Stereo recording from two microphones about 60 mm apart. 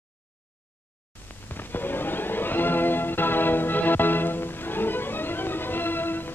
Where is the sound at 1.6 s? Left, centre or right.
Left.